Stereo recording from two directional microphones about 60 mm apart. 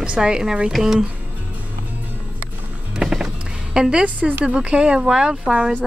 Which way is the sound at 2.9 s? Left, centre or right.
Centre.